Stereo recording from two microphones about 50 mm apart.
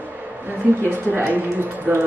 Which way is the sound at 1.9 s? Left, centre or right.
Right.